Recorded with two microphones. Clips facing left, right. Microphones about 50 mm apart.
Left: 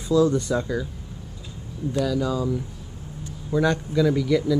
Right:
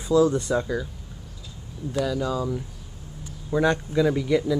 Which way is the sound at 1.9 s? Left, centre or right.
Centre.